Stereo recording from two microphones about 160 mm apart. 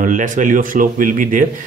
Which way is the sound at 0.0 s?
55° right (ahead or behind).